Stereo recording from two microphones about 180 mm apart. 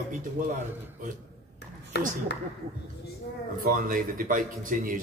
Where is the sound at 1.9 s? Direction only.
70° left (ahead or behind).